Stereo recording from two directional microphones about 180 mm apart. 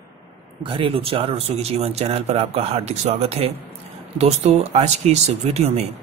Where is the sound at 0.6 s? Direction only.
30° right (ahead or behind).